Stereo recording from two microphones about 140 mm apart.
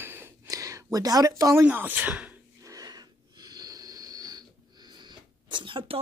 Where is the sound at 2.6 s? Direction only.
25° right (ahead or behind).